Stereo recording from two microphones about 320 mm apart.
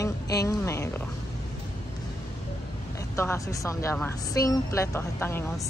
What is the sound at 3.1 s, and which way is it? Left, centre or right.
A woman's voice, centre.